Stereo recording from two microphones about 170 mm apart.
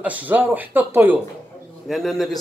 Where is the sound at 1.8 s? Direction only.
Centre (ahead or behind).